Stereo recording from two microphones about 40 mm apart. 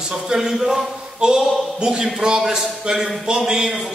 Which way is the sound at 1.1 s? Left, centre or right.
Centre.